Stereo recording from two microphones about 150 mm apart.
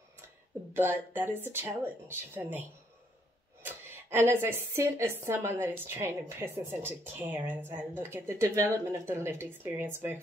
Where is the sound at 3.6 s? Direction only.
15° right (ahead or behind).